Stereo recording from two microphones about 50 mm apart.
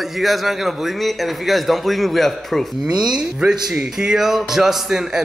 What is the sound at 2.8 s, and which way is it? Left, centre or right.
Speech, centre.